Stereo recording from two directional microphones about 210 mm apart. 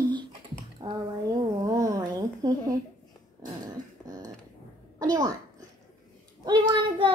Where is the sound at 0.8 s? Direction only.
20° right (ahead or behind).